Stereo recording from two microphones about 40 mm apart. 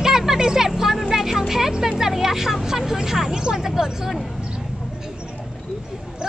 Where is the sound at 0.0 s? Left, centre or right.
Centre.